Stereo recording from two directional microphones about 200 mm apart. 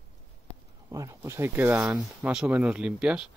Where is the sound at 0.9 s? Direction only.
15° right (ahead or behind).